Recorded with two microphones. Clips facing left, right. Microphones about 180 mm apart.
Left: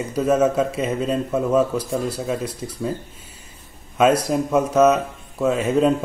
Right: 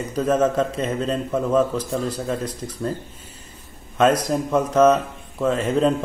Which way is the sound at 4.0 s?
10° left (ahead or behind).